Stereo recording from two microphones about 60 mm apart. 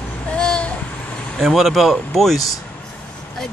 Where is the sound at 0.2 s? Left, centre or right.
Centre.